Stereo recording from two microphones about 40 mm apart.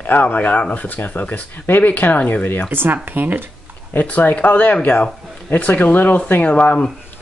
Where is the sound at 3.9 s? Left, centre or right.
Left.